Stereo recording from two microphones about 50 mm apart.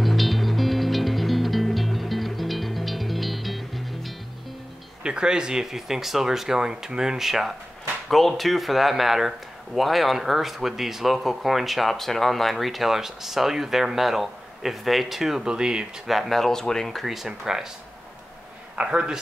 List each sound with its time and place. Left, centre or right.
0.0 s music: centre
5.0 s speech: centre
15.4 s speech: centre
16.1 s speech: centre
18.8 s speech: right